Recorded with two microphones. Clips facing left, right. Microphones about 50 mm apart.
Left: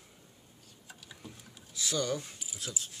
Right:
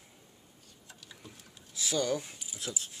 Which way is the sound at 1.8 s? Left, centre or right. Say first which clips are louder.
Right 2 dB; centre.